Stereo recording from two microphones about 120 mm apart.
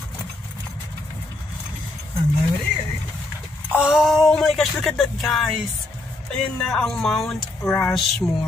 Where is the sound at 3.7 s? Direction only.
5° right (ahead or behind).